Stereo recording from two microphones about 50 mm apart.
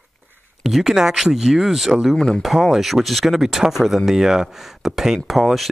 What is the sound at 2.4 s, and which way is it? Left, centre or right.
Speech, centre.